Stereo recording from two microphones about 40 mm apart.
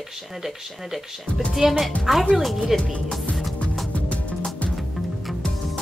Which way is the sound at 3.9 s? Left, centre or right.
Left.